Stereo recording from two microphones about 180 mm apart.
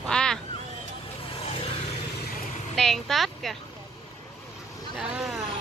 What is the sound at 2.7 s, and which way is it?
Speech, centre (ahead or behind).